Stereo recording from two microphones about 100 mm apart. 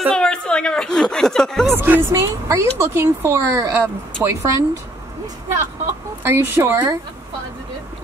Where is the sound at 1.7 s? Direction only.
20° right (ahead or behind).